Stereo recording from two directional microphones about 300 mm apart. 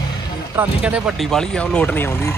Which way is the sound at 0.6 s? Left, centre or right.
Centre.